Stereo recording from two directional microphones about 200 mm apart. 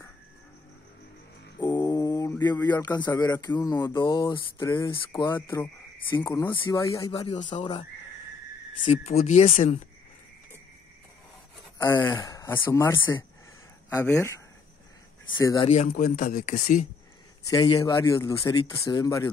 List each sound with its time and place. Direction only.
1.6 s mantra: 20° left (ahead or behind)
2.7 s speech: 20° left (ahead or behind)
5.3 s speech: 10° left (ahead or behind)
7.3 s speech: 35° left (ahead or behind)
8.8 s speech: 35° left (ahead or behind)
11.8 s speech: 15° left (ahead or behind)
15.4 s speech: 20° left (ahead or behind)
15.7 s speech: 40° left (ahead or behind)
17.5 s speech: 15° left (ahead or behind)